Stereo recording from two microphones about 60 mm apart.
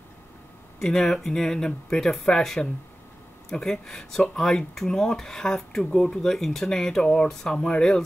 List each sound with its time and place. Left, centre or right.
0.7 s speech: centre